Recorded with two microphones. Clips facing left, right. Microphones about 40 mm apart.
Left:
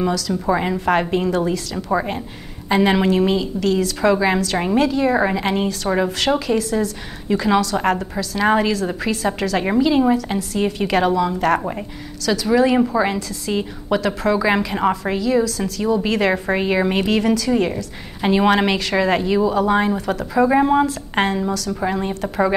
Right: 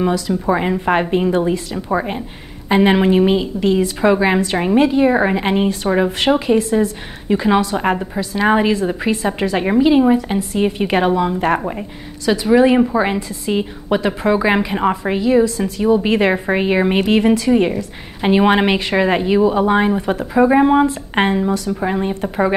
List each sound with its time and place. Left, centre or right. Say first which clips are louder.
0.3 s a woman's voice: right 2 dB; centre